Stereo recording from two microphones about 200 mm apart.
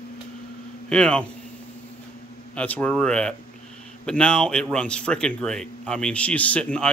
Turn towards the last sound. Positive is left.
turn(degrees=5)  # may be behind; listen again after turning